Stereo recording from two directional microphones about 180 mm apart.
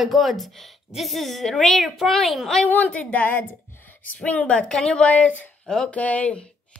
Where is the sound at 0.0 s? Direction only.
Centre (ahead or behind).